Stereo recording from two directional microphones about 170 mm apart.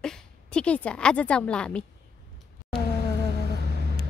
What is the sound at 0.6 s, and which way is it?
A woman's voice, 5° left (ahead or behind).